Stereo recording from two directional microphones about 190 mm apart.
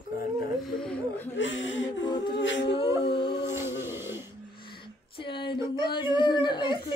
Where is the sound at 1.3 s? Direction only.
75° left (ahead or behind).